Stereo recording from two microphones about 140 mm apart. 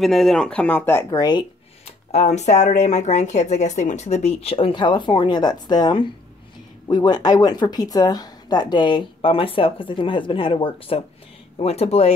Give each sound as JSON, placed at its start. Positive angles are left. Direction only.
{"t": 0.0, "sound": "speech", "side_deg": 0}
{"t": 1.1, "sound": "speech", "side_deg": 30}
{"t": 2.0, "sound": "a woman's voice", "side_deg": 50}